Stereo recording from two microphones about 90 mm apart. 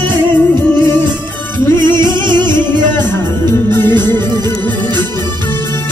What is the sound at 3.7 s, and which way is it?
Music, 25° left (ahead or behind).